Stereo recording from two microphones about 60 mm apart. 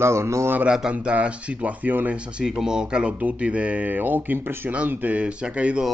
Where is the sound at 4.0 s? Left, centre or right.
Right.